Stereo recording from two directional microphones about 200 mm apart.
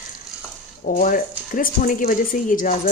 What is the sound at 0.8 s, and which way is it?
Speech, 45° left (ahead or behind).